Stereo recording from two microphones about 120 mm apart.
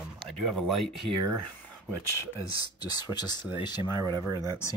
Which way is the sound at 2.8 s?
35° left (ahead or behind).